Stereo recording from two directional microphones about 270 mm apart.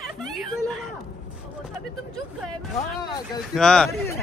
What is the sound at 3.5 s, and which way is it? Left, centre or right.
Speech, centre.